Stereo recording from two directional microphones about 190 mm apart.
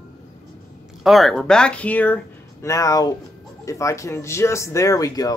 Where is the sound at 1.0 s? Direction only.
Centre (ahead or behind).